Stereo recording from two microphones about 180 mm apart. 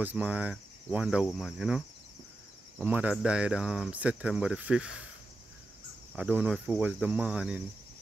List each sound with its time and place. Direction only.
0.0 s speech: 10° right (ahead or behind)
2.9 s speech: 5° right (ahead or behind)
6.1 s speech: 5° right (ahead or behind)